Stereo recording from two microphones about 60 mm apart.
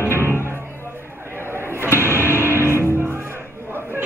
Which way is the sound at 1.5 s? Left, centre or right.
Right.